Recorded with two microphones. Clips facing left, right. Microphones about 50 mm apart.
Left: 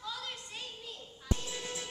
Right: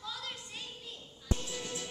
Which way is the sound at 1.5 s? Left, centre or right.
Left.